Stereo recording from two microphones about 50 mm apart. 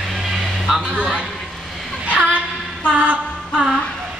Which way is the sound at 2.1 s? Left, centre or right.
Right.